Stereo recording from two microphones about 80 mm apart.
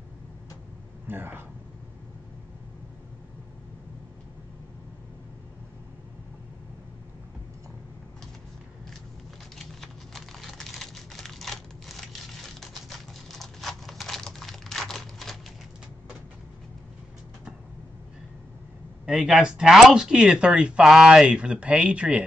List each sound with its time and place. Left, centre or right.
1.0 s speech: right
9.6 s a sound: centre
19.0 s speech: centre